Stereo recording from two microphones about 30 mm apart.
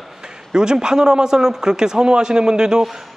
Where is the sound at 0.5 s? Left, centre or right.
Right.